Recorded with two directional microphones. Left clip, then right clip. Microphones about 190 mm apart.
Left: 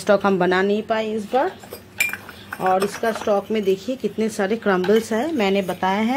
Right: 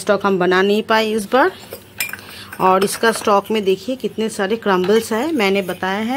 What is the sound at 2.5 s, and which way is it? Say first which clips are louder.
Speech: right 5 dB; 35° right (ahead or behind).